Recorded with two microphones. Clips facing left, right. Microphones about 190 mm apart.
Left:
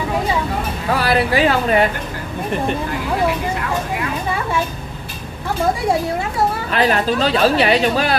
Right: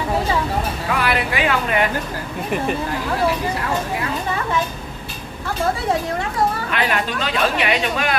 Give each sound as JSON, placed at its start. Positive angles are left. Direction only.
{"t": 0.9, "sound": "speech", "side_deg": 35}
{"t": 6.7, "sound": "a woman's voice", "side_deg": 35}